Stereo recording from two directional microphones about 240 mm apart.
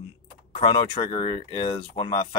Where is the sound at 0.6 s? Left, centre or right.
Centre.